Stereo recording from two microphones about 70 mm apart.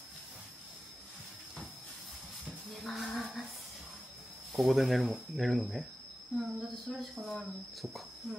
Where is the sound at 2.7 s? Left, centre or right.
Centre.